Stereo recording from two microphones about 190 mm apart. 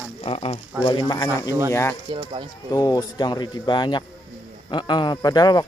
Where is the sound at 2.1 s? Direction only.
25° right (ahead or behind).